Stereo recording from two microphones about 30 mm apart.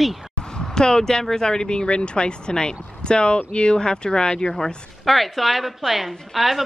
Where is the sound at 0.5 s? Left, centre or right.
Left.